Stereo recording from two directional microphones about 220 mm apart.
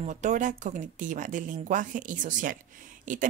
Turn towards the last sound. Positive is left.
turn(degrees=-35)  # may be behind; listen again after turning